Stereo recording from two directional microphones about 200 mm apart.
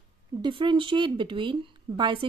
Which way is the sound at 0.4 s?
25° right (ahead or behind).